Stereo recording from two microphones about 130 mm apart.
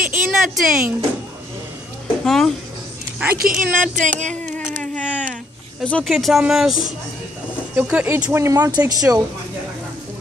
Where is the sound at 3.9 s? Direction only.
70° right (ahead or behind).